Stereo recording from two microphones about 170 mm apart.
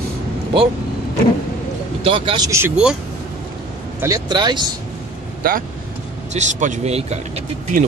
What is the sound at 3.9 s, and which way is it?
Speech, 20° right (ahead or behind).